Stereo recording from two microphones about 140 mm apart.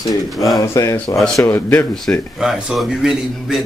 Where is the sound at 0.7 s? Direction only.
20° left (ahead or behind).